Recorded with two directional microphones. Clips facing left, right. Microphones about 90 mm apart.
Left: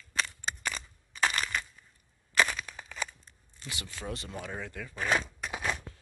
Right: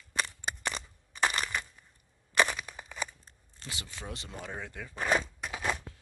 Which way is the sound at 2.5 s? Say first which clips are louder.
Even; 10° right (ahead or behind).